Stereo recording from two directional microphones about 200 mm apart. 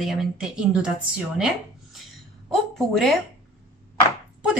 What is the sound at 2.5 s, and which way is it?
Speech, centre (ahead or behind).